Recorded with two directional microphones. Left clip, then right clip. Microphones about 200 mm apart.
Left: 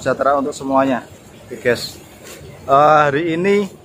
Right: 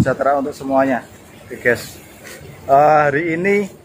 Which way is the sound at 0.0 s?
5° left (ahead or behind).